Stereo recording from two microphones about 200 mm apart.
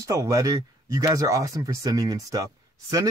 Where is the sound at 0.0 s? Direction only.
15° right (ahead or behind).